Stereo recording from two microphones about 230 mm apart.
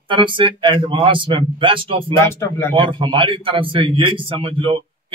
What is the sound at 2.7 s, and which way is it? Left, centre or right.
A man's voice, right.